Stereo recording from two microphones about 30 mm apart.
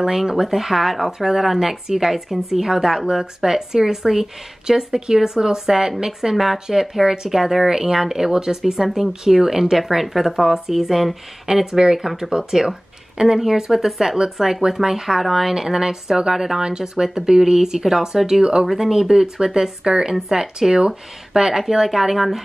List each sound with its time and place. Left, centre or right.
0.0 s speech: centre
8.7 s speech: centre
11.6 s speech: right
13.4 s speech: centre
15.5 s speech: centre
18.7 s speech: centre
19.3 s speech: right; by 22.2 s centre